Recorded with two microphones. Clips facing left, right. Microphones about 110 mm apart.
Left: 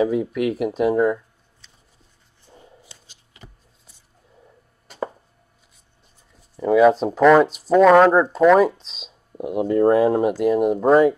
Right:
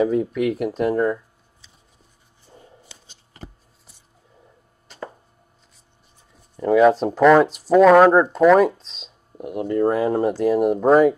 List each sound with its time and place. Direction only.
0.0 s speech: 5° left (ahead or behind)
0.7 s a sound: 5° left (ahead or behind)
6.5 s speech: centre (ahead or behind)
8.9 s speech: 15° left (ahead or behind)
9.8 s speech: 10° left (ahead or behind)
10.5 s speech: centre (ahead or behind)